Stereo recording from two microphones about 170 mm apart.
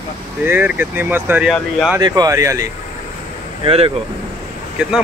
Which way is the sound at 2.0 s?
20° right (ahead or behind).